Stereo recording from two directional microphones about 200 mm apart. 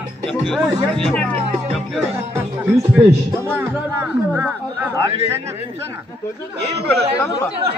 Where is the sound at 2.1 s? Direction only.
10° right (ahead or behind).